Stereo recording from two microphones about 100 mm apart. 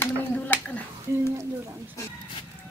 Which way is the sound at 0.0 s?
15° left (ahead or behind).